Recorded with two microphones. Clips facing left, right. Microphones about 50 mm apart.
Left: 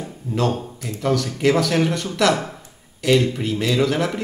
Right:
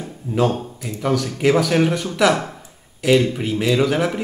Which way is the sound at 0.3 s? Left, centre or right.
Centre.